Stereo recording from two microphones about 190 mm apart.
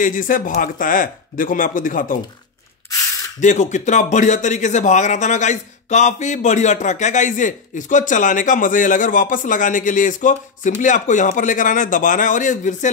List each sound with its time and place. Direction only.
0.0 s speech: 45° left (ahead or behind)
3.3 s speech: 40° left (ahead or behind)